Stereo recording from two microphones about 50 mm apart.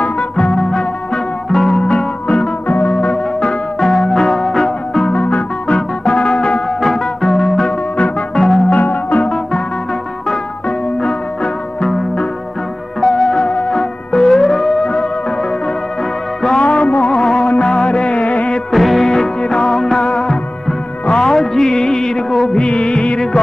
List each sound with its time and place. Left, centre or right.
0.0 s music: centre
3.8 s music: centre
5.1 s organ: left
5.7 s organ: centre
6.8 s music: centre
8.6 s music: left
9.2 s music: centre
11.0 s music: centre
13.0 s music: centre
16.4 s music: left
18.7 s music: centre
19.0 s music: centre
22.5 s music: centre